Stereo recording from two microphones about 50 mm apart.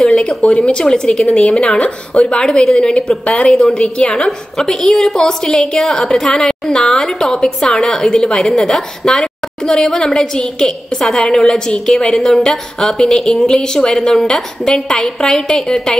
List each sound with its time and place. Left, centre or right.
0.0 s a woman's voice: centre